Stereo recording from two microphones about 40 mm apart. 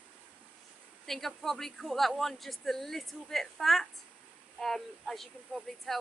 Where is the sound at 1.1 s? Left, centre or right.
Centre.